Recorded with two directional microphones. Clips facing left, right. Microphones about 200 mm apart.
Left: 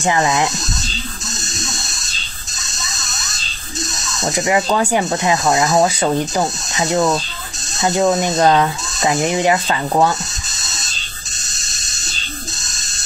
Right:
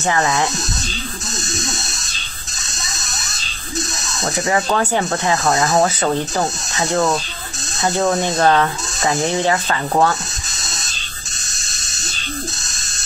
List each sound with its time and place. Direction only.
0.0 s speech: 15° left (ahead or behind)
4.7 s speech: 15° left (ahead or behind)